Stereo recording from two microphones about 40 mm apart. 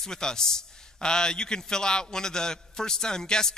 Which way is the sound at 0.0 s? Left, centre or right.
Centre.